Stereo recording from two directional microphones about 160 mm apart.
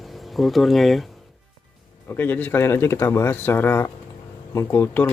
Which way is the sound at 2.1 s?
10° left (ahead or behind).